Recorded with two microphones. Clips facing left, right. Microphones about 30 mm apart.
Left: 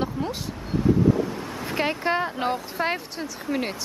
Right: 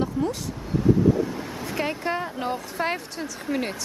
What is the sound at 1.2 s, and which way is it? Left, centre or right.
Vehicle, centre.